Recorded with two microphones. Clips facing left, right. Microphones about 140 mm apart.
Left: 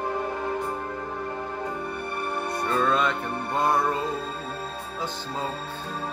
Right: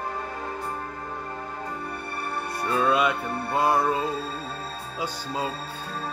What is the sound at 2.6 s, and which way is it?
Music, 10° right (ahead or behind).